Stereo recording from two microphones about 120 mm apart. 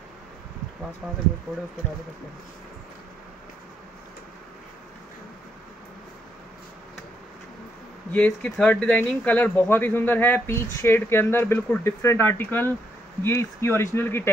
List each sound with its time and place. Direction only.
1.0 s speech: 5° right (ahead or behind)
8.1 s speech: 10° left (ahead or behind)